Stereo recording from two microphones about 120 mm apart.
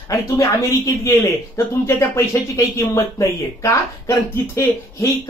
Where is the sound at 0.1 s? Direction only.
25° left (ahead or behind).